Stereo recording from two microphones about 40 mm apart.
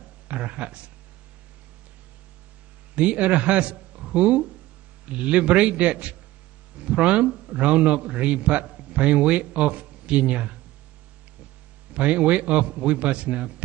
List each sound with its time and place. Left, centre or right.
0.3 s a man's voice: right
3.0 s a man's voice: right
11.9 s a man's voice: right